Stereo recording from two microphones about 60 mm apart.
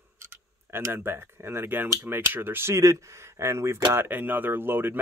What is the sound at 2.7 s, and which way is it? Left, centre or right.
Speech, right.